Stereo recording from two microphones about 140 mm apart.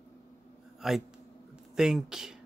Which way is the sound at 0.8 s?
Centre (ahead or behind).